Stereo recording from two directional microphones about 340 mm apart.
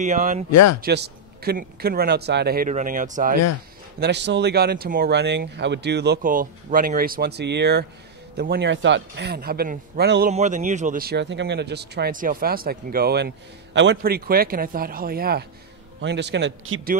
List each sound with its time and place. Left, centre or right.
0.0 s speech: right
0.5 s speech: left
0.7 s a man's voice: right